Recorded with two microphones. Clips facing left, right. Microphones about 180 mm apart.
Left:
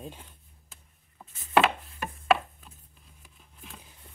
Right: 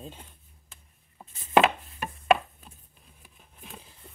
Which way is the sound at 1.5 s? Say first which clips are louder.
Right 2 dB; 20° right (ahead or behind).